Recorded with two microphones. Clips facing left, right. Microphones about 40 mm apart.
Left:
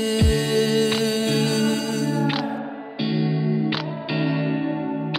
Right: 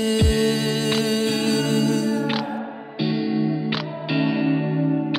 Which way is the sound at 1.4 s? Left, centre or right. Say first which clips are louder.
Even; centre.